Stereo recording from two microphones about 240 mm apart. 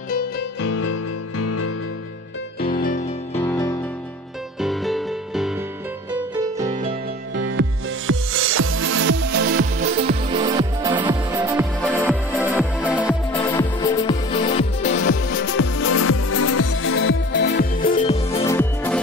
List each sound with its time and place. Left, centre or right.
0.6 s music: left
2.6 s music: left
3.3 s music: centre
4.6 s music: centre
6.6 s music: right
7.3 s music: right
8.1 s music: right
10.3 s music: centre
11.9 s music: centre
12.3 s music: centre
12.9 s music: centre
13.4 s music: centre
14.9 s music: left
18.4 s music: centre